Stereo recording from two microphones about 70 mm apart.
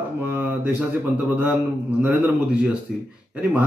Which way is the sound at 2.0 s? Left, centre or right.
Right.